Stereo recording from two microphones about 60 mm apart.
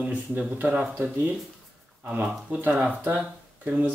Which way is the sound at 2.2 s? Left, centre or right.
Right.